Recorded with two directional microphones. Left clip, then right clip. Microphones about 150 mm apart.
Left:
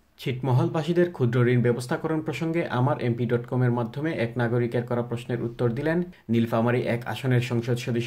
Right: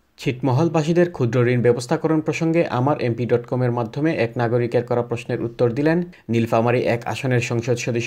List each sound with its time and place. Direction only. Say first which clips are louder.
0.2 s speech: right 7 dB; 45° right (ahead or behind)